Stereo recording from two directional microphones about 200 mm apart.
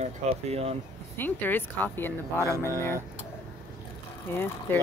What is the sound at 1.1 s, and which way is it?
A woman's voice, 10° left (ahead or behind).